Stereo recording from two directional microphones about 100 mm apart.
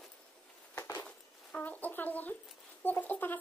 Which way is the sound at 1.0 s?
15° left (ahead or behind).